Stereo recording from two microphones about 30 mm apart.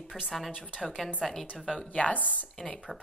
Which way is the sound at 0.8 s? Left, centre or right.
Centre.